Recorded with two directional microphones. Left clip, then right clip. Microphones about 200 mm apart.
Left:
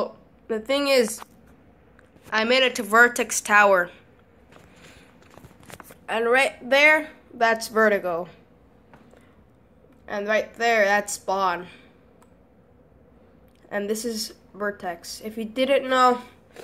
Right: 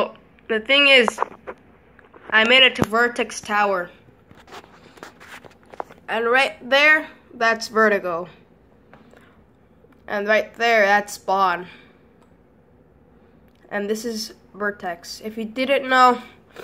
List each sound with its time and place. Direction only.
0.0 s a sound: 15° left (ahead or behind)
2.3 s speech: 15° left (ahead or behind)
5.9 s a woman's voice: 5° left (ahead or behind)
10.0 s a woman's voice: 5° right (ahead or behind)
13.7 s a woman's voice: centre (ahead or behind)